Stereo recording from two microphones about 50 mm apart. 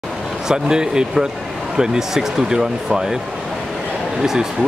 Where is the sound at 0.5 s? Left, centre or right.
Centre.